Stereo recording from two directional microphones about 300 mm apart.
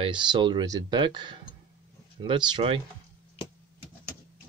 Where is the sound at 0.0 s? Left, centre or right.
Centre.